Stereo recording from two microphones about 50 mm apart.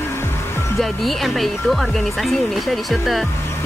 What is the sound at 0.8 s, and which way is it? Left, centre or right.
Speech, centre.